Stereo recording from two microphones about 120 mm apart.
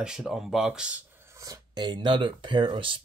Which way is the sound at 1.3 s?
25° right (ahead or behind).